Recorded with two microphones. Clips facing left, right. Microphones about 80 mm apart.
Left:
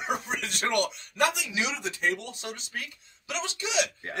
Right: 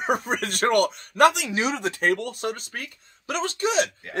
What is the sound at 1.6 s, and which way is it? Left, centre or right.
A man's voice, right.